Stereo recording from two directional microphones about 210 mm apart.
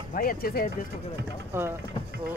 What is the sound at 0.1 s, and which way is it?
Speech, 45° left (ahead or behind).